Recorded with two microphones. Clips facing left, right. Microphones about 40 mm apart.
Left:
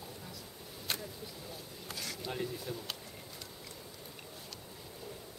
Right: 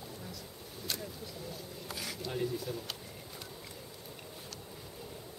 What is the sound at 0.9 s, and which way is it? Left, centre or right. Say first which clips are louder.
Speech: left 1 dB; left.